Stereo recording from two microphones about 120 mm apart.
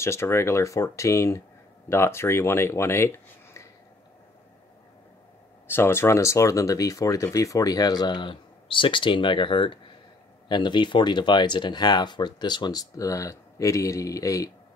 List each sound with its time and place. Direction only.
0.0 s speech: 20° left (ahead or behind)
5.7 s speech: 20° left (ahead or behind)